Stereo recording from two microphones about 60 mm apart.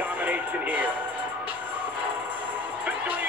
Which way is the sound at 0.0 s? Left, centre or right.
Right.